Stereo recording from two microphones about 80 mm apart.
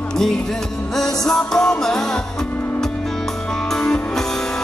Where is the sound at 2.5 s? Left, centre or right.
Left.